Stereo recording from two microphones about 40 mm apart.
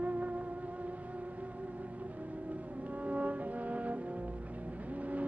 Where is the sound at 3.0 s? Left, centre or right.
Right.